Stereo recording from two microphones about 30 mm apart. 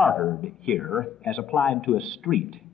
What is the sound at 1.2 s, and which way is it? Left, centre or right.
Speech, left.